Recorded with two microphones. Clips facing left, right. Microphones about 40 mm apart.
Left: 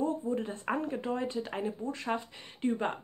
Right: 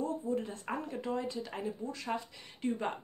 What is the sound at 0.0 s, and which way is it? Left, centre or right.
Speech, left.